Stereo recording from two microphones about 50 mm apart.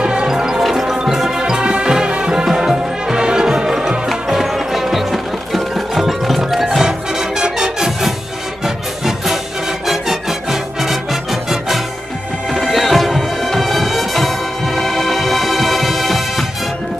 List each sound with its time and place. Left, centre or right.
0.0 s music: centre
12.5 s music: centre